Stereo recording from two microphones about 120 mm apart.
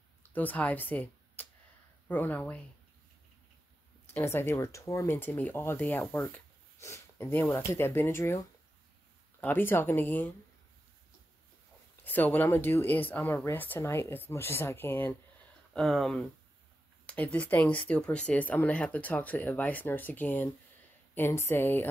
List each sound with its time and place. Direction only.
0.3 s speech: 15° left (ahead or behind)
4.1 s speech: 20° left (ahead or behind)
9.4 s speech: 15° left (ahead or behind)
12.0 s speech: 15° left (ahead or behind)
15.7 s speech: 5° left (ahead or behind)